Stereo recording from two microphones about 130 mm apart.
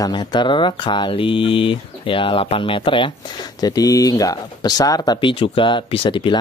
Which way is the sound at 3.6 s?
30° left (ahead or behind).